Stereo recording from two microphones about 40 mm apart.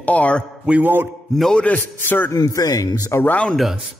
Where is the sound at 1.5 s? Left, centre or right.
Left.